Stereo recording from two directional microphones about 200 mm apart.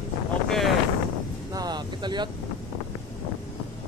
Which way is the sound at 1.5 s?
20° right (ahead or behind).